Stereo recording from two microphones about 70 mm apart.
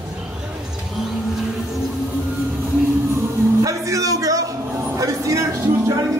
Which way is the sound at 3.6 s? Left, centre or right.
Right.